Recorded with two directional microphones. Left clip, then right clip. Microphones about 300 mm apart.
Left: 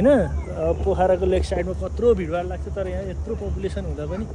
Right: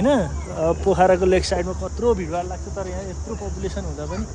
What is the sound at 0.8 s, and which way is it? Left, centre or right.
Speech, right.